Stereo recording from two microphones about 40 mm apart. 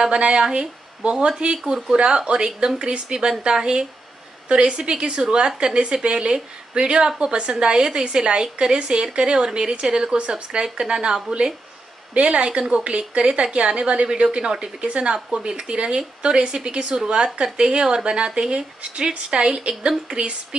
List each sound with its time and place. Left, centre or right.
0.0 s a woman's voice: right
13.2 s a woman's voice: centre